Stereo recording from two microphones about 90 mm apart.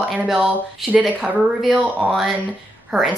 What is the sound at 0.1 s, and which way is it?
A woman's voice, 5° right (ahead or behind).